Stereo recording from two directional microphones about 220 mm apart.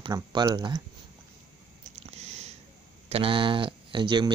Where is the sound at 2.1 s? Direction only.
30° right (ahead or behind).